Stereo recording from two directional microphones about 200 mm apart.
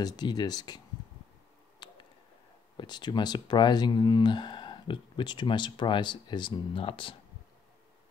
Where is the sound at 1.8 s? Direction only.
25° left (ahead or behind).